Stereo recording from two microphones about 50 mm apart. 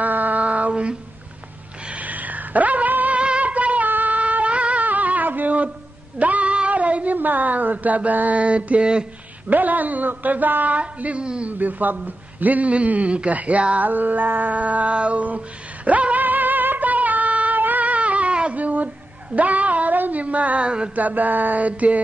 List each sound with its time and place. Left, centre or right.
0.0 s female singing: right
1.9 s a sound: right
3.2 s music: right
6.1 s female singing: right
7.2 s a sound: right
9.5 s a man's voice: right
11.5 s a man's voice: right
13.8 s a sound: right
19.3 s a woman's voice: right
20.9 s a man's voice: right